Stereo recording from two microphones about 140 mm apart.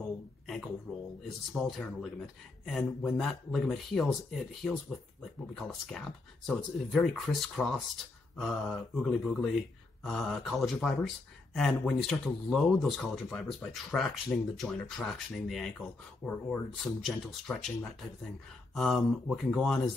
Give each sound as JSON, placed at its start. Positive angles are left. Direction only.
{"t": 0.9, "sound": "speech", "side_deg": -5}